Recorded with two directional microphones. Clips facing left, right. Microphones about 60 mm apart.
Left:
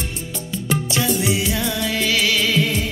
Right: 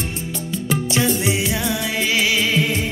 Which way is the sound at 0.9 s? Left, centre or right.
Right.